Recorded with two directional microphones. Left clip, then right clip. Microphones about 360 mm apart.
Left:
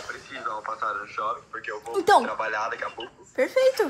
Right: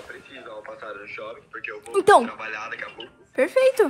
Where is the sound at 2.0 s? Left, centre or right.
Right.